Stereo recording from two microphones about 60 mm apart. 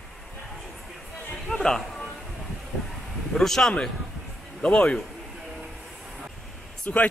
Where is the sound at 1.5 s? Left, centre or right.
Centre.